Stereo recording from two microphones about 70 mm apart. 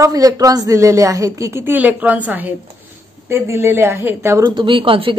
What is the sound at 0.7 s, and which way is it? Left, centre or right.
Speech, right.